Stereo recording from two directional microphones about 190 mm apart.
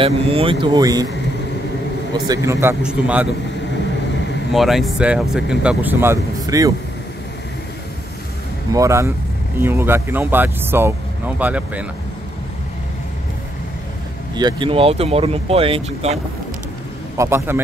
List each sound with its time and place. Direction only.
0.0 s speech: 30° right (ahead or behind)
2.1 s speech: 20° right (ahead or behind)
2.8 s speech: 5° right (ahead or behind)
4.5 s speech: centre (ahead or behind); by 6.7 s 20° right (ahead or behind)
8.7 s speech: 15° right (ahead or behind)
14.3 s speech: 25° right (ahead or behind)
17.2 s speech: 15° right (ahead or behind)